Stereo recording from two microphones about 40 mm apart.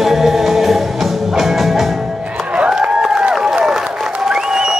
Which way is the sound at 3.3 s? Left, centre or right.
Centre.